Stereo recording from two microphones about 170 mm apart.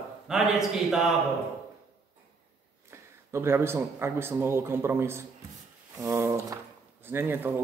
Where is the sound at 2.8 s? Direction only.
15° right (ahead or behind).